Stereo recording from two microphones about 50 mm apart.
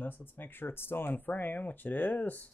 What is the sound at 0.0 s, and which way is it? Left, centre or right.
Speech, left.